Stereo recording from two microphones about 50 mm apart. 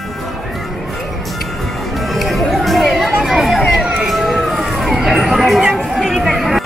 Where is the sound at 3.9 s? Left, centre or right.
Centre.